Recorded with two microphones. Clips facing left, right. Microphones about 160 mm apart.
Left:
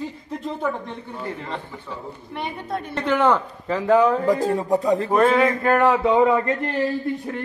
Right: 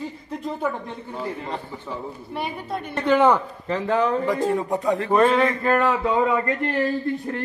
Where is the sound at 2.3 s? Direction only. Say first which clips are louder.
Left 1 dB; 10° right (ahead or behind).